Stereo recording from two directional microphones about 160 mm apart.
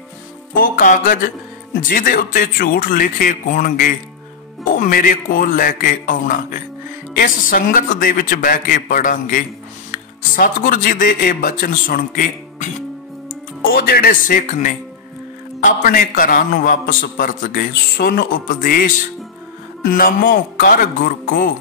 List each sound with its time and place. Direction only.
0.6 s speech: 60° left (ahead or behind)